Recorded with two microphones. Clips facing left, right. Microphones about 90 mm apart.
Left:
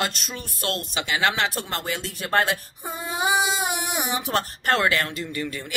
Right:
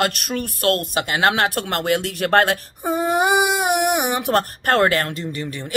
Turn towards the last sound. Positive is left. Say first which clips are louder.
# right 2 dB
turn(degrees=-25)  # may be behind; listen again after turning